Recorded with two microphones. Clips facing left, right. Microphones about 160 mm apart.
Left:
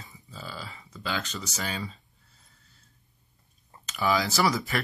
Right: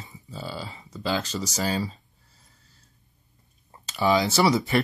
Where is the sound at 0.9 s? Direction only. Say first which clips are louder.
Right 6 dB; 35° right (ahead or behind).